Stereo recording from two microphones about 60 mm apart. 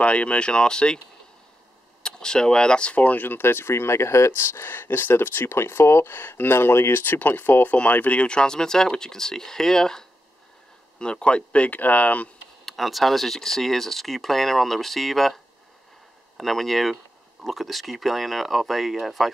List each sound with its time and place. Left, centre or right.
0.0 s speech: centre
2.0 s speech: centre; by 7.7 s left
7.7 s speech: left
12.6 s speech: centre
16.3 s speech: centre